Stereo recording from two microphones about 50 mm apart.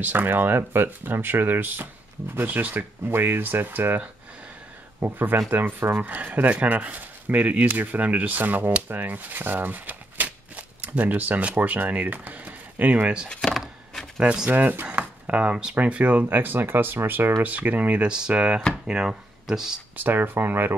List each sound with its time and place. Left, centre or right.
0.0 s speech: right
6.0 s speech: right
13.4 s a sound: centre
14.5 s speech: right
14.9 s a sound: right
15.7 s speech: right
16.3 s speech: right
18.0 s speech: centre
20.0 s speech: right